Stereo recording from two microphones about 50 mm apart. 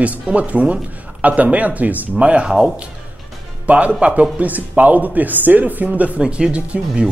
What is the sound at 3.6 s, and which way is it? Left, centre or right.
A man's voice, right.